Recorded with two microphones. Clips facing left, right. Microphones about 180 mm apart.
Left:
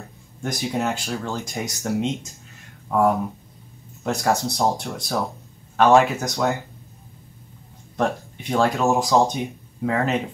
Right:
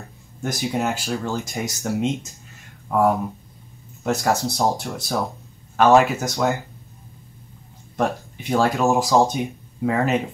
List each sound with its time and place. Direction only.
0.4 s speech: 5° right (ahead or behind)
7.9 s speech: 5° right (ahead or behind)